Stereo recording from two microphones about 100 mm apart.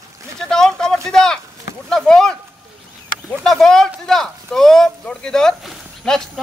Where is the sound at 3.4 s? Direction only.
5° left (ahead or behind).